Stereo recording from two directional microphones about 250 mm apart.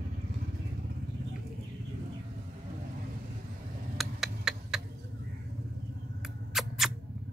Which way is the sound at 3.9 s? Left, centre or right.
Centre.